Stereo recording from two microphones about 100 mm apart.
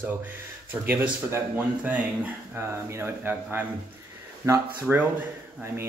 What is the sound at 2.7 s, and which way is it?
Speech, 25° right (ahead or behind).